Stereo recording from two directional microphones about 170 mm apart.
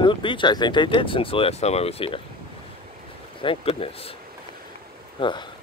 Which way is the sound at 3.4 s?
30° left (ahead or behind).